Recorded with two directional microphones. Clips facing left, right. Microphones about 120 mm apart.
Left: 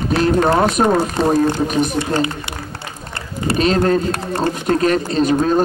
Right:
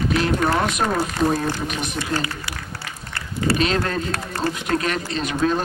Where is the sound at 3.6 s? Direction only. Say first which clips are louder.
Left 7 dB; 40° left (ahead or behind).